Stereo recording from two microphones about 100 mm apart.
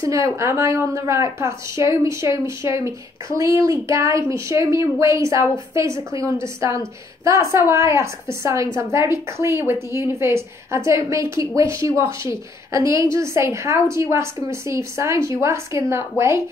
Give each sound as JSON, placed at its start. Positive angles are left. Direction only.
{"t": 0.0, "sound": "a woman's voice", "side_deg": -30}